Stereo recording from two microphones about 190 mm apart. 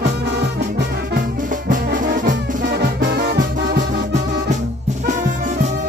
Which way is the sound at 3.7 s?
40° right (ahead or behind).